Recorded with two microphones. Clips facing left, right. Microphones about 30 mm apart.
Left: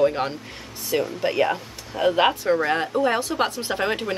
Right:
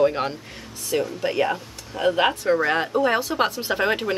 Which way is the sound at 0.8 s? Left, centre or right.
Centre.